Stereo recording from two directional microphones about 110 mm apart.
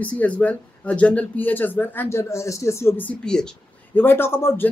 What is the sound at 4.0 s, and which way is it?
Speech, 20° left (ahead or behind).